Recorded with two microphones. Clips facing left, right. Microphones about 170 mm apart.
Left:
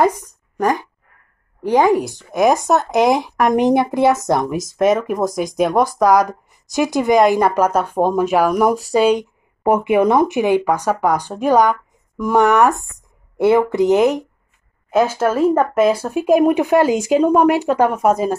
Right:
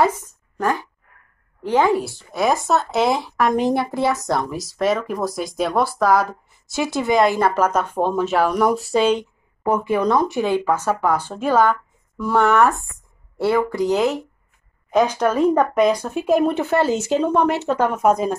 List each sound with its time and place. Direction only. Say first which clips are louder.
0.0 s a sound: left 3 dB; 15° left (ahead or behind)
1.6 s speech: left 3 dB; 15° left (ahead or behind)
9.6 s speech: left 5 dB; 25° left (ahead or behind)
14.9 s speech: left 2 dB; 5° left (ahead or behind)